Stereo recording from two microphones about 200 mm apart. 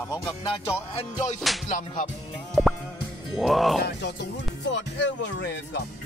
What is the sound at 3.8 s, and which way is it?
Speech, 60° left (ahead or behind).